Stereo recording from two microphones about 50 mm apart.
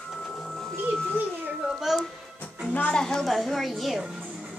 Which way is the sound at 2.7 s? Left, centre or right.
Left.